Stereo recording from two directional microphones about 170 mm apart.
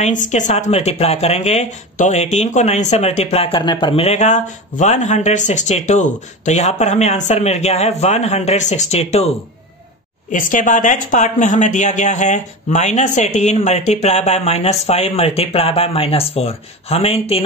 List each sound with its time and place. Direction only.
0.0 s speech: 45° left (ahead or behind)
10.3 s speech: 50° left (ahead or behind)